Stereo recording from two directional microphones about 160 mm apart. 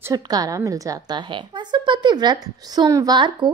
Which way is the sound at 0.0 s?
20° right (ahead or behind).